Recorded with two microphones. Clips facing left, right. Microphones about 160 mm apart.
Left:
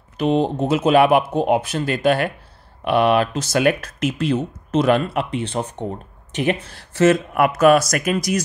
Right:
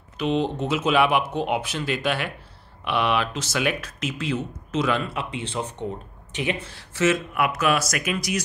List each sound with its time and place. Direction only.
0.2 s speech: 40° left (ahead or behind)